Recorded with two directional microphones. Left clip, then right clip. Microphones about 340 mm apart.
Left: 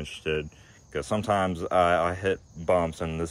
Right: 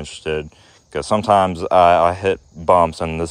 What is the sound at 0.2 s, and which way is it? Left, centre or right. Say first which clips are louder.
Speech: right 6 dB; centre.